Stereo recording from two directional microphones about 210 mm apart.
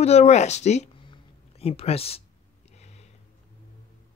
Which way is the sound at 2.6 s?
30° left (ahead or behind).